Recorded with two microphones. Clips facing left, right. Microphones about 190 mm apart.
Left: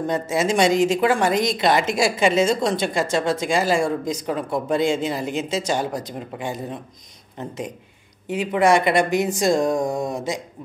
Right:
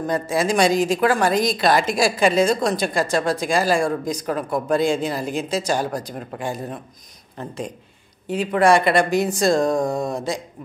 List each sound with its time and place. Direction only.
0.0 s speech: 25° left (ahead or behind)